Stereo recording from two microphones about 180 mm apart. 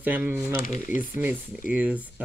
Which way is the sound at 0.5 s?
50° left (ahead or behind).